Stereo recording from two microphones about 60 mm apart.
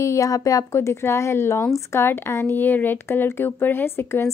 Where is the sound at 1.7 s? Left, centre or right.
Left.